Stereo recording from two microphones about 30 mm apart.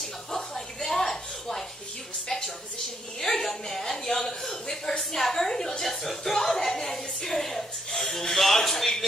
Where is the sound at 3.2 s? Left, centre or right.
Centre.